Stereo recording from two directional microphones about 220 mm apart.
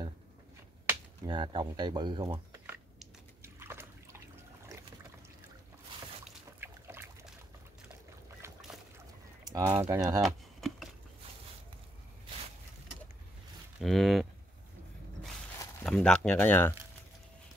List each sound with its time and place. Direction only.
1.2 s speech: 20° right (ahead or behind)
3.4 s a sound: 10° right (ahead or behind)
6.6 s boat: 10° right (ahead or behind)
9.4 s speech: 15° right (ahead or behind)
10.2 s a sound: centre (ahead or behind)
13.7 s speech: centre (ahead or behind)
15.8 s speech: 5° left (ahead or behind)